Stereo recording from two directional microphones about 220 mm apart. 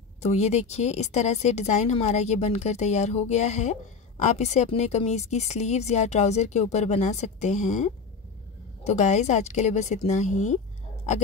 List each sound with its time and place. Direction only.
0.2 s a woman's voice: 30° left (ahead or behind)